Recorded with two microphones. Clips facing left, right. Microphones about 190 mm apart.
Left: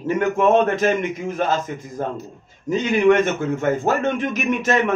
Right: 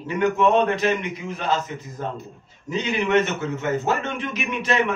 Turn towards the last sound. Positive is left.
turn(degrees=45)  # may be behind; listen again after turning